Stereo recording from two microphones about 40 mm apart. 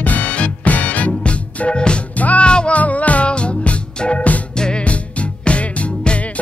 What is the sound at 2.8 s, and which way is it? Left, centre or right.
Music, left.